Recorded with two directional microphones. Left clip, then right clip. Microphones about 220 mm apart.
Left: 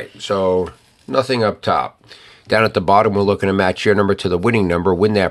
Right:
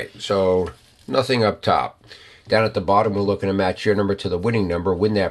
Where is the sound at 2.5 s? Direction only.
30° left (ahead or behind).